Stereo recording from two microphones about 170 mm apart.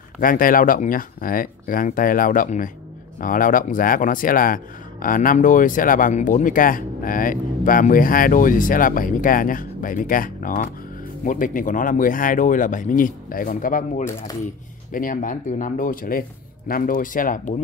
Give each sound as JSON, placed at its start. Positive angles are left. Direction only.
{"t": 0.2, "sound": "speech", "side_deg": 55}